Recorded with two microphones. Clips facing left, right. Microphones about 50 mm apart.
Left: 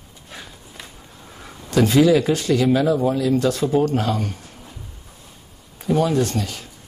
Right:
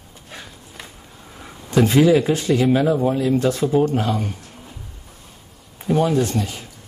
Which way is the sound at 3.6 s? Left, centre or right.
Centre.